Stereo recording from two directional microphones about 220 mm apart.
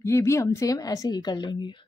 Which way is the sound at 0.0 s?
10° left (ahead or behind).